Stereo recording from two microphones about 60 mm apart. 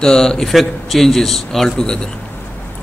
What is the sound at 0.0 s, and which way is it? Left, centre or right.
A man's voice, centre.